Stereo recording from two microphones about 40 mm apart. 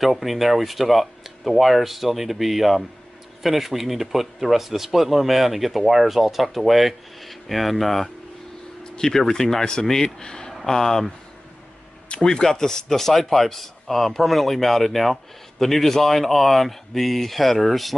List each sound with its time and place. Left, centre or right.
0.0 s speech: centre
8.8 s speech: centre
12.1 s speech: centre